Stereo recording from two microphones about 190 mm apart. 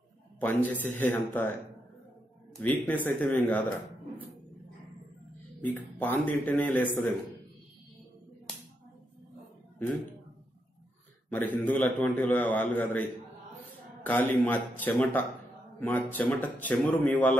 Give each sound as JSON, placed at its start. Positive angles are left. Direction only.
{"t": 0.4, "sound": "a man's voice", "side_deg": 10}
{"t": 2.6, "sound": "a man's voice", "side_deg": 10}
{"t": 5.6, "sound": "a man's voice", "side_deg": 10}
{"t": 11.2, "sound": "a man's voice", "side_deg": 10}
{"t": 14.0, "sound": "a man's voice", "side_deg": 10}